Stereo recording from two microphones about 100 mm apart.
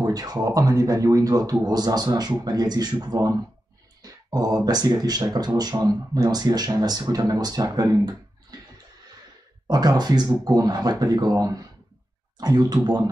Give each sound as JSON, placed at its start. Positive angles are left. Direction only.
{"t": 0.0, "sound": "speech", "side_deg": -40}
{"t": 9.7, "sound": "speech", "side_deg": -45}